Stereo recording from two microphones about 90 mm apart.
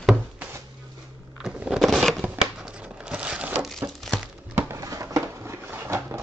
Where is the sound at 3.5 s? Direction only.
Centre (ahead or behind).